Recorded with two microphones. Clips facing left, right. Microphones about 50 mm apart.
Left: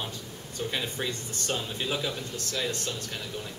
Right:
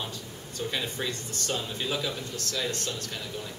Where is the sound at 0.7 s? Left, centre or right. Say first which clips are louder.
Even; centre.